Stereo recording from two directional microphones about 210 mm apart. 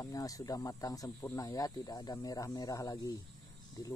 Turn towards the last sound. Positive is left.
turn(degrees=15)  # may be behind; listen again after turning